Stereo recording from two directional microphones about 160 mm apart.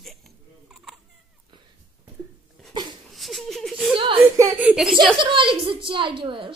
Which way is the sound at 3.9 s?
30° right (ahead or behind).